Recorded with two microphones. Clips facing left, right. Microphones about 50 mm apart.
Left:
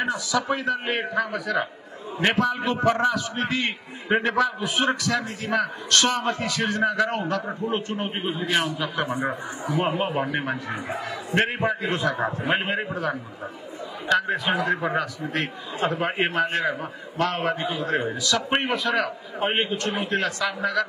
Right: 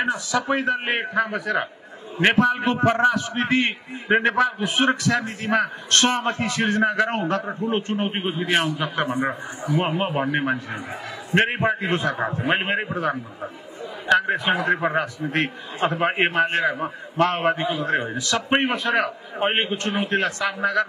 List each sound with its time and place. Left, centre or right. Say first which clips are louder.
0.0 s a man's voice: right 2 dB; right
14.0 s a man's voice: right 3 dB; right